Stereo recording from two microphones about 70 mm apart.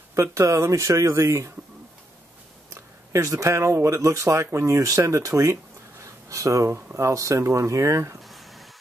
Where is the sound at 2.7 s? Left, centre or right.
Right.